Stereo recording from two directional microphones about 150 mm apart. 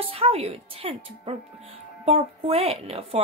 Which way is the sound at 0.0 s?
40° right (ahead or behind).